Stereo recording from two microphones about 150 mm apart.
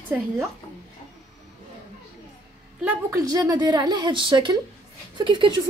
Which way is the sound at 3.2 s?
25° right (ahead or behind).